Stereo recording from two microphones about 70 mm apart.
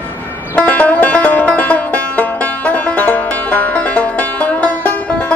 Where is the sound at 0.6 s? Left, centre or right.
Left.